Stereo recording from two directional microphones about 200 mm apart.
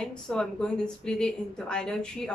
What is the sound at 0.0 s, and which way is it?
A woman's voice, 5° left (ahead or behind).